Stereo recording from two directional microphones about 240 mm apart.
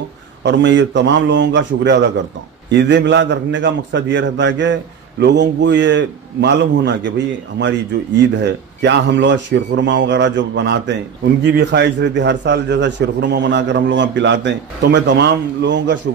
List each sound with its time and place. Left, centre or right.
0.4 s a man's voice: right